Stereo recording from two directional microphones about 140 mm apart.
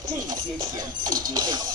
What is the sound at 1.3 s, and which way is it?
Music, 30° right (ahead or behind).